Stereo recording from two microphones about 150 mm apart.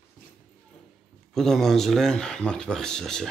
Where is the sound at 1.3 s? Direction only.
Centre (ahead or behind).